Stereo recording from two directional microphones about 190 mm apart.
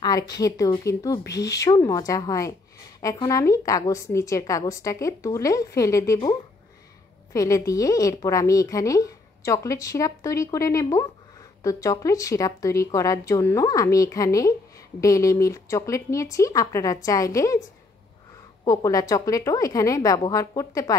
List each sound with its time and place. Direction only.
0.0 s a woman's voice: 20° left (ahead or behind)
7.3 s a woman's voice: 15° left (ahead or behind)
18.6 s a woman's voice: 20° left (ahead or behind)